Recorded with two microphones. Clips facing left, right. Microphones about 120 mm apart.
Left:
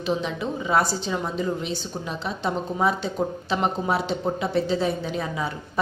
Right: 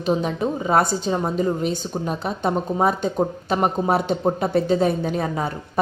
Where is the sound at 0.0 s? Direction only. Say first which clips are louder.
Right 4 dB; 45° right (ahead or behind).